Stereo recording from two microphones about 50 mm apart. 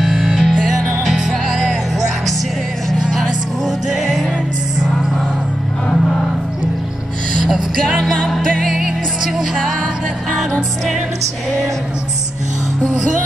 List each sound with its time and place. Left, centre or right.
0.0 s music: centre
3.2 s music: centre
7.8 s music: centre
8.6 s music: centre